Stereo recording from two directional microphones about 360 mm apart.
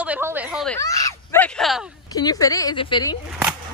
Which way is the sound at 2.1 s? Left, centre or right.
Centre.